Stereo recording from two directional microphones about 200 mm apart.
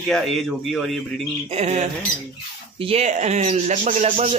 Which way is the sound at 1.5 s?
35° right (ahead or behind).